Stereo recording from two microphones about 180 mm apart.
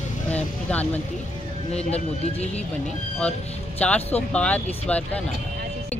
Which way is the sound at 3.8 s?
10° left (ahead or behind).